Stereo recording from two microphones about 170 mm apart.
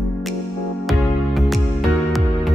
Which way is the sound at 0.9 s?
Centre (ahead or behind).